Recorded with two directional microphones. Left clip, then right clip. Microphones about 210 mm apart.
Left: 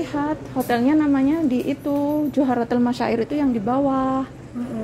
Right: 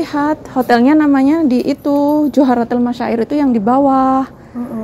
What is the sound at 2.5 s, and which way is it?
Speech, 5° right (ahead or behind).